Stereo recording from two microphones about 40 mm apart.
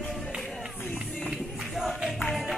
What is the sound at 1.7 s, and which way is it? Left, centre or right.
Music, centre.